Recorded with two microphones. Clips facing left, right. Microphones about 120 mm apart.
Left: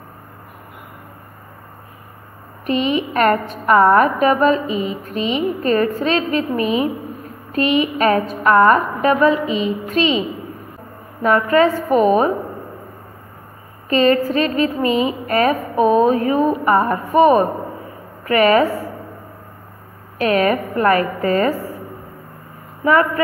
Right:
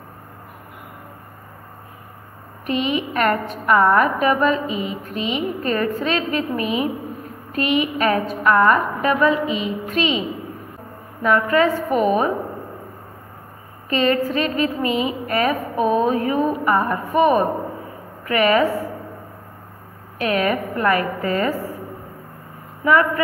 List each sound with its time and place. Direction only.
2.6 s a woman's voice: 35° left (ahead or behind)
11.2 s a woman's voice: 35° left (ahead or behind)
13.8 s a woman's voice: 35° left (ahead or behind)
20.2 s a woman's voice: 40° left (ahead or behind)
22.8 s a woman's voice: 40° left (ahead or behind)